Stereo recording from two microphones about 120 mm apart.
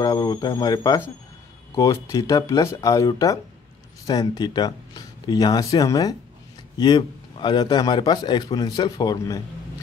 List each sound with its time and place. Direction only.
0.0 s speech: 30° left (ahead or behind)